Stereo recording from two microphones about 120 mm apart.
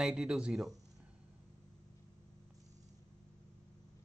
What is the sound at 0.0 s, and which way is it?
Speech, 5° right (ahead or behind).